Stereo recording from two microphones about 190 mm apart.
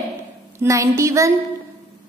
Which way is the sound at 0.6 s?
15° right (ahead or behind).